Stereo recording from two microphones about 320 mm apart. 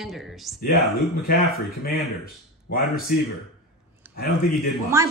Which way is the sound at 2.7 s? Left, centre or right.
Left.